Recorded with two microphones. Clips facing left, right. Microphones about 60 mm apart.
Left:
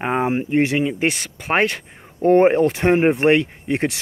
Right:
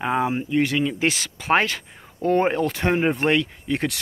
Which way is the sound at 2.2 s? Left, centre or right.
Left.